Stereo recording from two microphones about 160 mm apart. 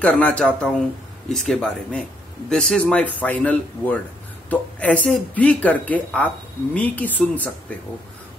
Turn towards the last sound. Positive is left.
turn(degrees=10)  # may be behind; listen again after turning